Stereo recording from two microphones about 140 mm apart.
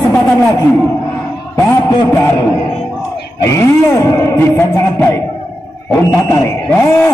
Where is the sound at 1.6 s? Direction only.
20° left (ahead or behind).